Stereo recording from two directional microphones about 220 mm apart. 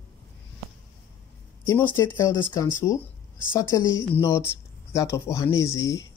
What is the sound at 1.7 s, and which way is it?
Speech, 10° left (ahead or behind).